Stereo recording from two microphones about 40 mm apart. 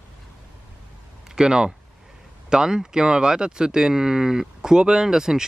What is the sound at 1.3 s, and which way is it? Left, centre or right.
Speech, centre.